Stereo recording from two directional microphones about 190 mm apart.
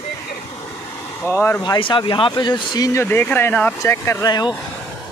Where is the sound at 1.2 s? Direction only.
10° left (ahead or behind).